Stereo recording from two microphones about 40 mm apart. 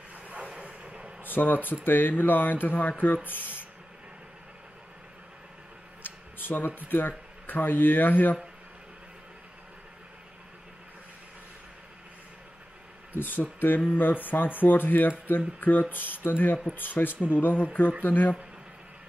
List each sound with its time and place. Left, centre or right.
0.1 s vehicle: right
1.2 s speech: left
6.0 s a sound: left
6.9 s speech: left
13.1 s speech: left